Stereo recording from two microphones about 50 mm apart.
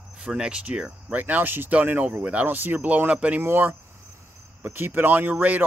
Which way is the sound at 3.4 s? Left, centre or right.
Right.